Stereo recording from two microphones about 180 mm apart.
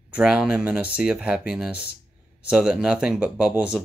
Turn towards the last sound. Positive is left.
turn(degrees=-5)  # may be behind; listen again after turning